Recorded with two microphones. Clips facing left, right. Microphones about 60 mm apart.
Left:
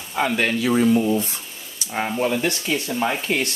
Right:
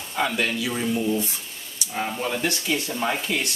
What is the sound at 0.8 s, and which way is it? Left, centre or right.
Speech, left.